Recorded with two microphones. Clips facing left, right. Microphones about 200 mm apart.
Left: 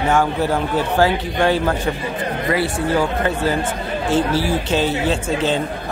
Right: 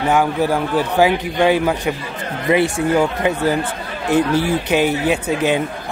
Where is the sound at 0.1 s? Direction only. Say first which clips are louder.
Right 2 dB; 10° right (ahead or behind).